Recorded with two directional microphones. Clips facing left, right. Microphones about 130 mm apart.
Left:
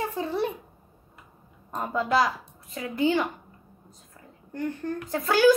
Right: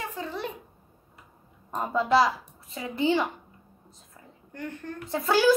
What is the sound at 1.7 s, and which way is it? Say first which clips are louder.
Speech: right 1 dB; 5° right (ahead or behind).